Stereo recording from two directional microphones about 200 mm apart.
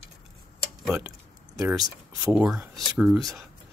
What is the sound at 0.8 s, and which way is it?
Speech, 5° right (ahead or behind).